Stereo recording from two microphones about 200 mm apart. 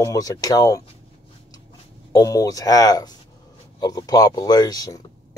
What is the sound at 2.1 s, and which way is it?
Speech, 15° left (ahead or behind).